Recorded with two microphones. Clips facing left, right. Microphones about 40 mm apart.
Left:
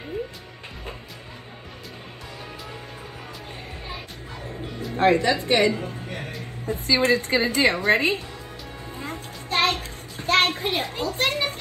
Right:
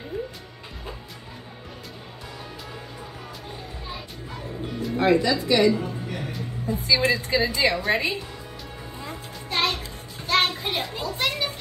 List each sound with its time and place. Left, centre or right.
4.9 s music: left
6.9 s a child's voice: left
9.0 s a sound: left
10.7 s a child's voice: left